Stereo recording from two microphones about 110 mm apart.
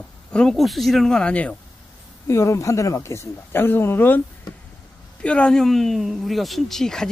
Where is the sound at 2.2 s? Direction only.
25° left (ahead or behind).